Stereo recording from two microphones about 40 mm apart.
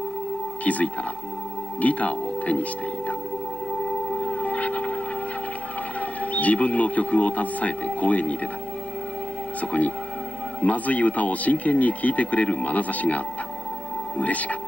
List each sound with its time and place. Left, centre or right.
0.7 s speech: left
4.1 s music: left
4.6 s a sound: left
5.9 s speech: left
9.6 s speech: left